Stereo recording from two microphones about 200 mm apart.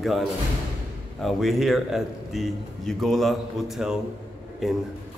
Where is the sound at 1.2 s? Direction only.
Centre (ahead or behind).